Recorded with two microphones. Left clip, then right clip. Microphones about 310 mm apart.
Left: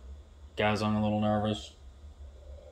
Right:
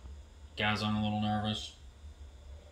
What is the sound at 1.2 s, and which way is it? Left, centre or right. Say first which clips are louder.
Speech: left 6 dB; left.